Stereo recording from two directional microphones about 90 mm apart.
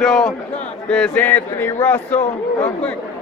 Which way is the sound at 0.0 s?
5° left (ahead or behind).